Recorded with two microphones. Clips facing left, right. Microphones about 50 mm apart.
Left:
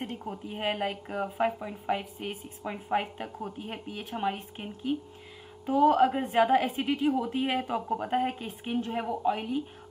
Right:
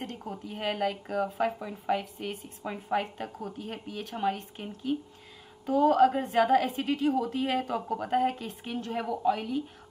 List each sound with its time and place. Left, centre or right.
0.5 s speech: left